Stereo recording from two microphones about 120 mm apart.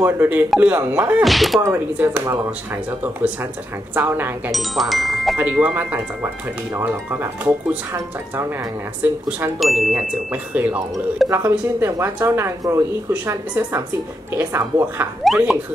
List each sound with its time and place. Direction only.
0.0 s speech: 15° right (ahead or behind)
1.2 s speech: centre (ahead or behind)
1.7 s speech: 20° right (ahead or behind)
3.9 s speech: 15° right (ahead or behind)
4.5 s speech: centre (ahead or behind)
5.4 s speech: 10° right (ahead or behind)
9.0 s speech: 15° right (ahead or behind)
9.6 s speech: centre (ahead or behind)
10.3 s speech: 15° right (ahead or behind)
15.2 s speech: 5° right (ahead or behind)